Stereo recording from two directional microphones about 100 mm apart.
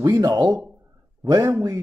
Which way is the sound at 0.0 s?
30° right (ahead or behind).